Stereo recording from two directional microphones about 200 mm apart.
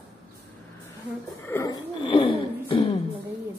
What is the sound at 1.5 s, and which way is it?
Speech, 15° left (ahead or behind).